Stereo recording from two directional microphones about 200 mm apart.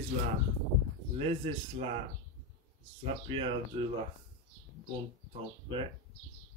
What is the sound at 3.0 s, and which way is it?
Speech, 25° right (ahead or behind).